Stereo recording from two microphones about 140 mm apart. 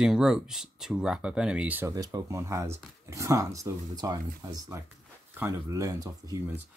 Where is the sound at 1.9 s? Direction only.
25° right (ahead or behind).